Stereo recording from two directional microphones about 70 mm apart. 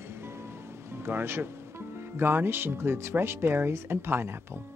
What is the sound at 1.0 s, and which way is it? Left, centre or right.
Speech, right.